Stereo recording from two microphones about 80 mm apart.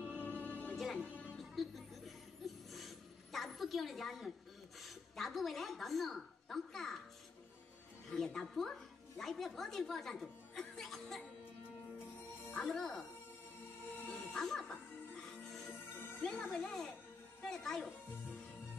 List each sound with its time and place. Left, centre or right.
0.4 s music: left
0.7 s music: centre
4.8 s a woman's voice: centre
8.1 s speech: centre
12.5 s speech: centre
14.1 s music: centre
16.2 s speech: centre